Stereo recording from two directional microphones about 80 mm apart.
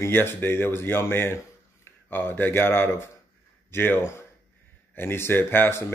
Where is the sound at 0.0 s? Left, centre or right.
Left.